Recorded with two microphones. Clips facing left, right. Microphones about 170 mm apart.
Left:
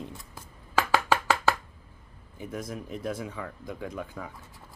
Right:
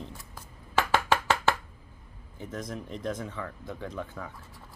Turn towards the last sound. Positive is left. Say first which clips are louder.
# left 1 dB
turn(degrees=10)  # may be behind; listen again after turning